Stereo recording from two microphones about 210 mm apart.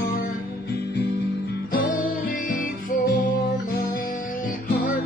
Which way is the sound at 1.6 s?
45° left (ahead or behind).